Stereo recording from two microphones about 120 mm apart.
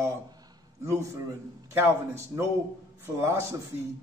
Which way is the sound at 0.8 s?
25° right (ahead or behind).